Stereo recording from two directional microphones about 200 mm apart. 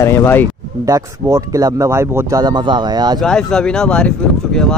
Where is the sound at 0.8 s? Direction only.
15° right (ahead or behind).